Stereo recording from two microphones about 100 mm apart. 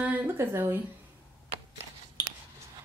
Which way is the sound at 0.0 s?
20° right (ahead or behind).